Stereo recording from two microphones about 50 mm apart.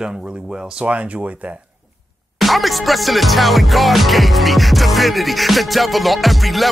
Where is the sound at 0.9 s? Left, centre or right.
Right.